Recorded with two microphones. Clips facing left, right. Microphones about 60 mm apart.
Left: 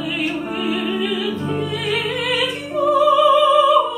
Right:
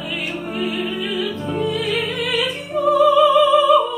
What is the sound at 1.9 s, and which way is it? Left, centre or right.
Music, left.